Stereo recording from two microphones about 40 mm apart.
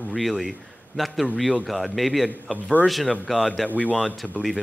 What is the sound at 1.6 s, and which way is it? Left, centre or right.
A man's voice, centre.